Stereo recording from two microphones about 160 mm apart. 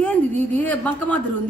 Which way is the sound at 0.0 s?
10° left (ahead or behind).